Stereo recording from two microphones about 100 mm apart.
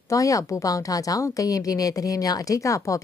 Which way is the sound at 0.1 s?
35° left (ahead or behind).